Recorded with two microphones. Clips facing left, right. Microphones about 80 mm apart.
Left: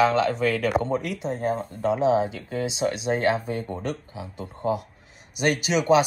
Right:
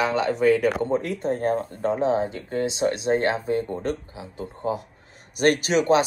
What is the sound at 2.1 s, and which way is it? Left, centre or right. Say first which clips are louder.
Speech: even; right.